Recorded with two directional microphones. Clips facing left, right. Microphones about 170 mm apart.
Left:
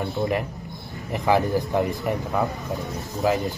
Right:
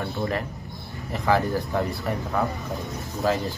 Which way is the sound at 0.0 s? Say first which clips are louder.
Left 3 dB; 15° left (ahead or behind).